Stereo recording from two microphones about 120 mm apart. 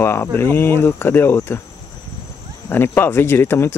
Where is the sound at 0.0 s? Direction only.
20° left (ahead or behind).